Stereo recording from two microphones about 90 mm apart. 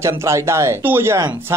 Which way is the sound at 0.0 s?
30° right (ahead or behind).